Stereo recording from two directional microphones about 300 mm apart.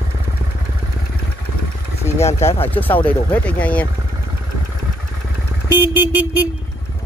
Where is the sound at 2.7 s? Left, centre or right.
Centre.